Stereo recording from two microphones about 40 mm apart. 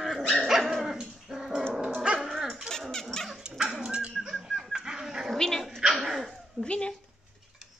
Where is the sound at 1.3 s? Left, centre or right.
Centre.